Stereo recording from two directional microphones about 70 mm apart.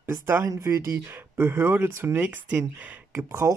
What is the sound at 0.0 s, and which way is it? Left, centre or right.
Speech, right.